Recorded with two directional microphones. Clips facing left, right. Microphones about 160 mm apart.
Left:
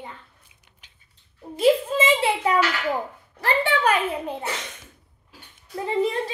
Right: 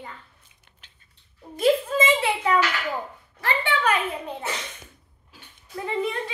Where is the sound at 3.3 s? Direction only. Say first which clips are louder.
Left 3 dB; 35° left (ahead or behind).